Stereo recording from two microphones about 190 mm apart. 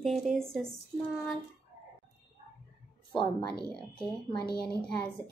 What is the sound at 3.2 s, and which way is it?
Speech, 25° left (ahead or behind).